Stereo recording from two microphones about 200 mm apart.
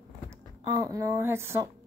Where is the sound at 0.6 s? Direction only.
15° right (ahead or behind).